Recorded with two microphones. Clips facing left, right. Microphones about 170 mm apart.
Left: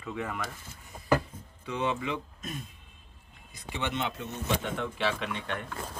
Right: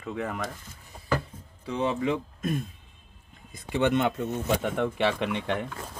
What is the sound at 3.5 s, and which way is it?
Speech, 50° right (ahead or behind).